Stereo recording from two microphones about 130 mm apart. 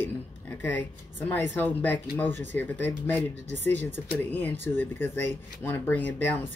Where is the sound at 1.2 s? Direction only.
15° left (ahead or behind).